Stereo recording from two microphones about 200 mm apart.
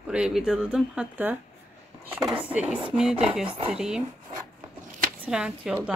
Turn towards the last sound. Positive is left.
turn(degrees=-5)  # may be behind; listen again after turning